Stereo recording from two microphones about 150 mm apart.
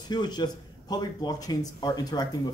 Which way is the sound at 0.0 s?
30° left (ahead or behind).